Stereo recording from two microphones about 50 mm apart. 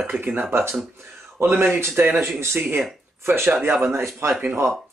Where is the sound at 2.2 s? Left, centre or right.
Right.